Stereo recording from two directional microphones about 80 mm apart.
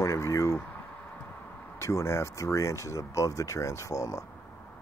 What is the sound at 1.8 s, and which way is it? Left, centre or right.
Speech, left.